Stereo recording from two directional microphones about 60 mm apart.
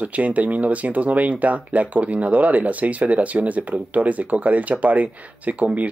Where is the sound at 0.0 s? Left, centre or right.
Right.